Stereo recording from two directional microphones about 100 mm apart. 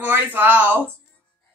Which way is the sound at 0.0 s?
20° right (ahead or behind).